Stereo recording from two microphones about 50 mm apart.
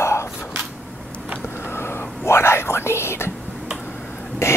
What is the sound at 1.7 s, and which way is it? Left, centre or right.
Whispering, left.